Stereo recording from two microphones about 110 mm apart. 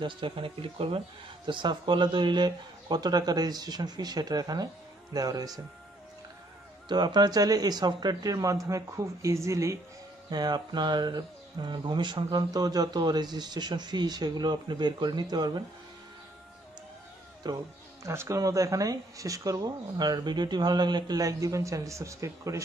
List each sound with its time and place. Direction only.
0.0 s speech: 50° right (ahead or behind)
1.4 s speech: 45° right (ahead or behind)
6.9 s speech: 40° right (ahead or behind); by 9.8 s 25° right (ahead or behind)
10.3 s speech: 40° right (ahead or behind)
17.4 s speech: 35° right (ahead or behind)
18.0 s speech: 25° right (ahead or behind)